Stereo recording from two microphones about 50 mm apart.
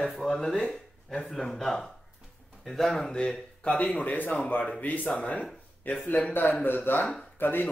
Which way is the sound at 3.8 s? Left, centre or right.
Left.